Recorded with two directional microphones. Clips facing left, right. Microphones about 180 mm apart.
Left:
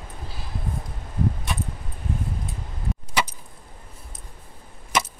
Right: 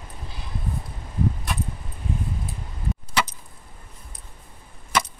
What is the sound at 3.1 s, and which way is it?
Chop, 15° left (ahead or behind).